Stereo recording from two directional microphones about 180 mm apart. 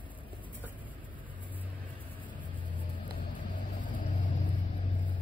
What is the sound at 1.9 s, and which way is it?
Vehicle, 10° left (ahead or behind).